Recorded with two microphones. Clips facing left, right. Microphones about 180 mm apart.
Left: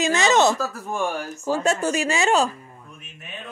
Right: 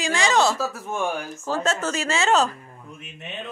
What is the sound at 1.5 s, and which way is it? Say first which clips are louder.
Speech: left 3 dB; 15° left (ahead or behind).